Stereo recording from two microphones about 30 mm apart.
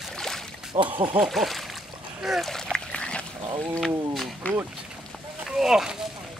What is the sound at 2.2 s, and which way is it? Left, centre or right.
Speech, centre.